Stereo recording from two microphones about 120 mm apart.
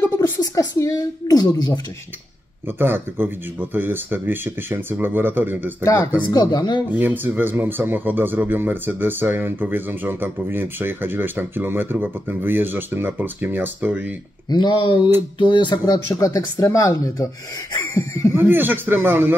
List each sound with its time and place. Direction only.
0.2 s a woman's voice: 25° left (ahead or behind)
2.8 s speech: 20° right (ahead or behind)
6.2 s speech: 35° left (ahead or behind)
6.9 s speech: 15° right (ahead or behind)
14.5 s a woman's voice: 40° left (ahead or behind)
18.3 s a man's voice: 20° right (ahead or behind)